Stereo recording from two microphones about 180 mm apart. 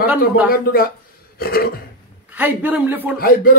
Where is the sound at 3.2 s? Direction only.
55° left (ahead or behind).